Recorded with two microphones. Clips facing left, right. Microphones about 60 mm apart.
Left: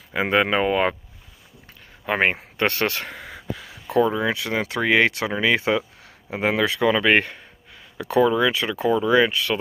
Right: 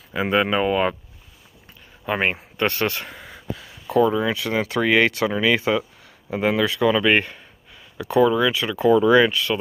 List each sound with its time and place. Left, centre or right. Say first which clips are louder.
0.1 s speech: even; left
2.0 s speech: left 1 dB; left
4.0 s speech: right 1 dB; left
9.0 s speech: right 1 dB; centre